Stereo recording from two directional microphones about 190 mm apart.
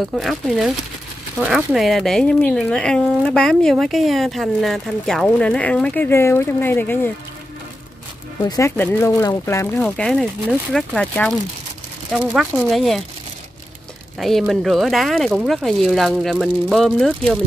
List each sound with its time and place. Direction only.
0.1 s speech: centre (ahead or behind)
8.4 s speech: 15° left (ahead or behind); by 13.0 s centre (ahead or behind)
14.2 s speech: centre (ahead or behind)